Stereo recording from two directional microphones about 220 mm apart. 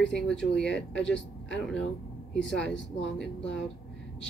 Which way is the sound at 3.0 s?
5° left (ahead or behind).